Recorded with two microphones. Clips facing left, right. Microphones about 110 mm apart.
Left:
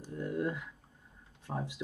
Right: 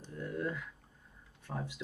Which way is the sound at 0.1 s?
20° left (ahead or behind).